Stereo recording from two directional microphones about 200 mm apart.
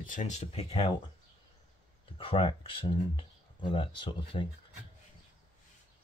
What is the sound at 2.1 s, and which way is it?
Speech, 25° left (ahead or behind).